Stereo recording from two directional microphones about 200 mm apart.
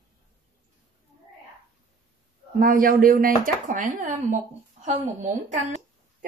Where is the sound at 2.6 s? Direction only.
45° right (ahead or behind).